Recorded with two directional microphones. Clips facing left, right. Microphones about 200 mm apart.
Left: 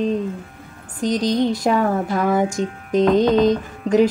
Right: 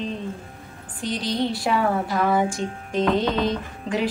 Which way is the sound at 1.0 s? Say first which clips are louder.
Left 6 dB; 45° left (ahead or behind).